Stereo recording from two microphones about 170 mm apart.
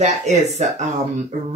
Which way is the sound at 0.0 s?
40° right (ahead or behind).